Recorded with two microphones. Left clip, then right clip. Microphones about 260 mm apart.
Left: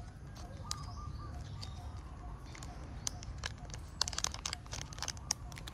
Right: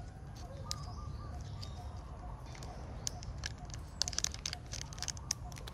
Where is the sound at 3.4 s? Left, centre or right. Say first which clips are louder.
Left 2 dB; centre.